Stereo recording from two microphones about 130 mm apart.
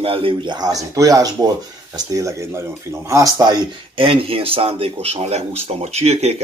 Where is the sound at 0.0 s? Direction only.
45° right (ahead or behind); by 3.5 s 30° right (ahead or behind).